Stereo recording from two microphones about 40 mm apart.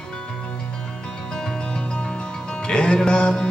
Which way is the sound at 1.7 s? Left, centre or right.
Left.